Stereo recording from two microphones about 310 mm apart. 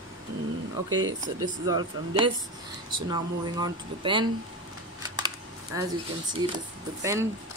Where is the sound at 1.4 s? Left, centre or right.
Centre.